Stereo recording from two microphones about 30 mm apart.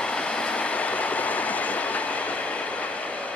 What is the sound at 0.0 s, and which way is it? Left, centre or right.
Train, left.